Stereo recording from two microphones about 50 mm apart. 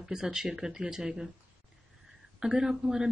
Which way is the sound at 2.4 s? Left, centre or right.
Centre.